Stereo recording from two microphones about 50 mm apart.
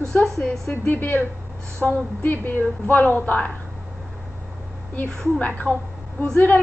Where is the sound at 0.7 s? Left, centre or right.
Left.